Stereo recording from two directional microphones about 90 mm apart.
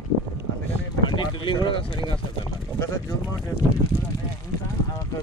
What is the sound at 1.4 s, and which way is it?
Speech, 65° left (ahead or behind).